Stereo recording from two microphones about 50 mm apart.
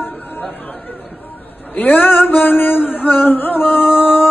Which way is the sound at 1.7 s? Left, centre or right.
Left.